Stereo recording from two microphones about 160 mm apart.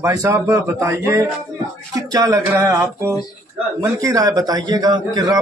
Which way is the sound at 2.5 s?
15° right (ahead or behind).